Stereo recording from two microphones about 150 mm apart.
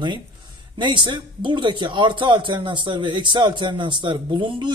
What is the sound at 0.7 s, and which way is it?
A man's voice, 30° right (ahead or behind).